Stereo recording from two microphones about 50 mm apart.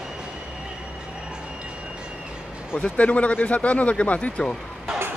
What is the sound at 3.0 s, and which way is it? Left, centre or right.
A man's voice, left.